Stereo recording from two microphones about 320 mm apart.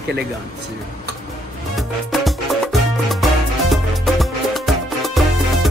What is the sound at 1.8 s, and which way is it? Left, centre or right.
Music, centre.